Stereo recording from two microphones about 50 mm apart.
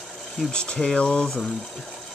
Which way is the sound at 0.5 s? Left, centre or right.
Centre.